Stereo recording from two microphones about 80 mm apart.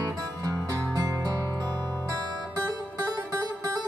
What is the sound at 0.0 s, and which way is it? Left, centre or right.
Music, right.